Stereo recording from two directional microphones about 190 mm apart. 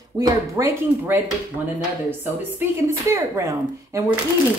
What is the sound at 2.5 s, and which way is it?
Speech, 15° right (ahead or behind).